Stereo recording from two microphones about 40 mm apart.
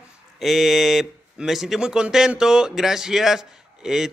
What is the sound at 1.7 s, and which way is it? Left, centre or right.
A man's voice, centre.